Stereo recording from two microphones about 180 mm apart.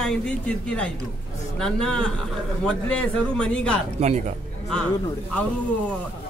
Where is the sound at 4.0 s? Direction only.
35° right (ahead or behind).